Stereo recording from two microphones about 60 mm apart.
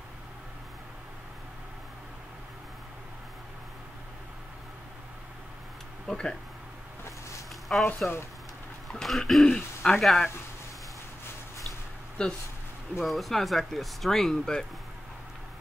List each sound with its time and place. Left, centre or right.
6.0 s speech: centre
7.7 s speech: centre
8.9 s speech: centre
12.2 s speech: centre
13.0 s speech: centre